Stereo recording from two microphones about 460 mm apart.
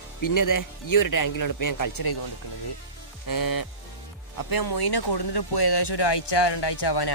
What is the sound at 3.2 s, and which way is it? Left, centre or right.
Speech, left.